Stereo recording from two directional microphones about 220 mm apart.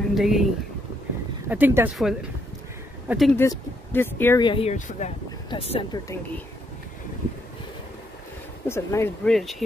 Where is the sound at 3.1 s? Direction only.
Centre (ahead or behind).